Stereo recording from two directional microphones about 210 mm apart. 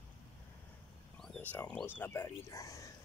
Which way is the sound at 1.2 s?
5° left (ahead or behind).